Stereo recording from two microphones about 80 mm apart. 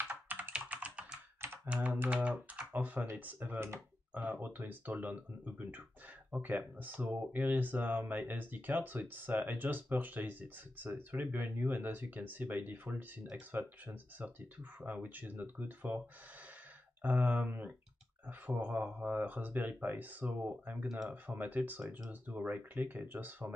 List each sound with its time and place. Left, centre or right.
0.1 s computer keyboard: centre
1.7 s typing: centre
3.1 s speech: right
17.0 s speech: right